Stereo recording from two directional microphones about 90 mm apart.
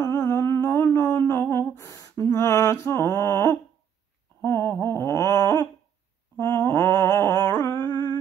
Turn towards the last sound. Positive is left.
turn(degrees=20)  # may be behind; listen again after turning